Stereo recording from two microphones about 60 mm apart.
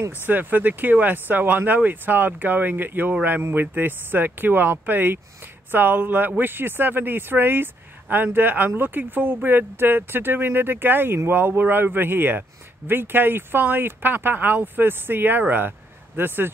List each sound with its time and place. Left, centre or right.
0.1 s speech: right